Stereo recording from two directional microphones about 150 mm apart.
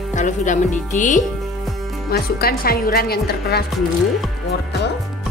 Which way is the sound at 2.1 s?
90° left.